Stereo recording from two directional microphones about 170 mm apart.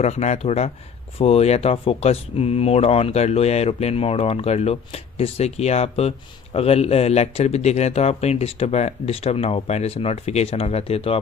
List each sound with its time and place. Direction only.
0.0 s speech: 40° left (ahead or behind)